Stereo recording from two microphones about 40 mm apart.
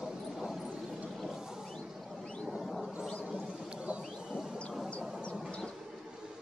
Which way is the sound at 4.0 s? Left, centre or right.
Centre.